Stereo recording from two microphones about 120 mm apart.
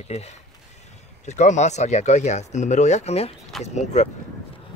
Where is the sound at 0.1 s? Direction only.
65° left (ahead or behind).